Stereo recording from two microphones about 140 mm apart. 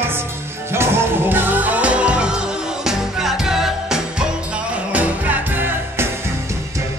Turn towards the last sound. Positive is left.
turn(degrees=-15)  # may be behind; listen again after turning